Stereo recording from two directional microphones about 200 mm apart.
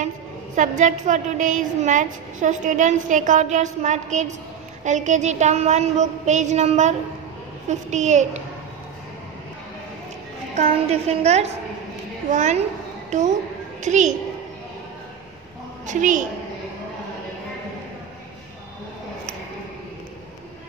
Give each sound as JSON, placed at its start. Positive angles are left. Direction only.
{"t": 0.6, "sound": "a woman's voice", "side_deg": -40}
{"t": 10.5, "sound": "a woman's voice", "side_deg": -35}
{"t": 13.8, "sound": "a woman's voice", "side_deg": -35}
{"t": 15.9, "sound": "a woman's voice", "side_deg": -40}